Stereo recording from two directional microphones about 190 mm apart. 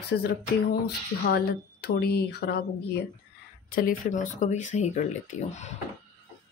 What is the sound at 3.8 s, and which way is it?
Speech, 45° left (ahead or behind).